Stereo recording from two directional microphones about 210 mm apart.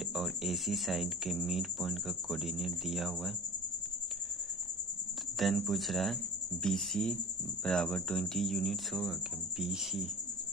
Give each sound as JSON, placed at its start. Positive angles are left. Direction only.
{"t": 0.1, "sound": "speech", "side_deg": 0}
{"t": 5.4, "sound": "speech", "side_deg": 0}